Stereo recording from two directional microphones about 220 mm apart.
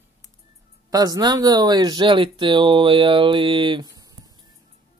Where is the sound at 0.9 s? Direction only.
15° right (ahead or behind).